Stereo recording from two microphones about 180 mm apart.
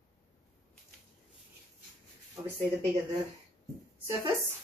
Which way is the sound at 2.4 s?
20° right (ahead or behind).